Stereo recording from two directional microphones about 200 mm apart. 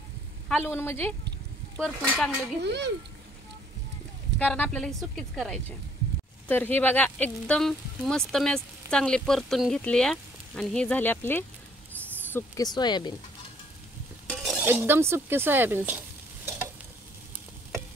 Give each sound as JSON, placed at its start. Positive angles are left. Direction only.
{"t": 0.5, "sound": "speech", "side_deg": 10}
{"t": 1.8, "sound": "speech", "side_deg": -5}
{"t": 2.6, "sound": "a child's voice", "side_deg": -55}
{"t": 4.4, "sound": "speech", "side_deg": 5}
{"t": 14.4, "sound": "shatter", "side_deg": 0}
{"t": 14.7, "sound": "a woman's voice", "side_deg": -10}